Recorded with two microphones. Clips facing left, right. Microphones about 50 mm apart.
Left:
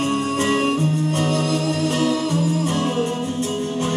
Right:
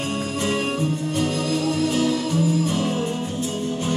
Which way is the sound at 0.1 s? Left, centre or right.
Left.